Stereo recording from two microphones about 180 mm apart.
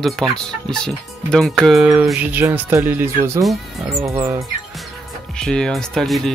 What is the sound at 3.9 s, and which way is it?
Speech, 15° right (ahead or behind).